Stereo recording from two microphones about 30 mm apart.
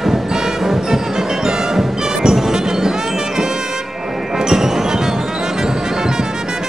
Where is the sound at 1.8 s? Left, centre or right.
Centre.